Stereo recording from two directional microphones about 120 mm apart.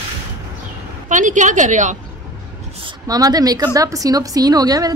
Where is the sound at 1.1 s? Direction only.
90° right.